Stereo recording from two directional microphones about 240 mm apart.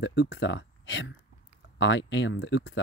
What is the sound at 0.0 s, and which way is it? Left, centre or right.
Speech, left.